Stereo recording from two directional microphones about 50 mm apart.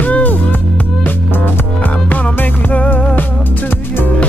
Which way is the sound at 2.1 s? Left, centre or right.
Left.